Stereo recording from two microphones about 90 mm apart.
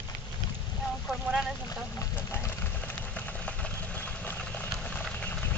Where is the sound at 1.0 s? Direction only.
5° right (ahead or behind).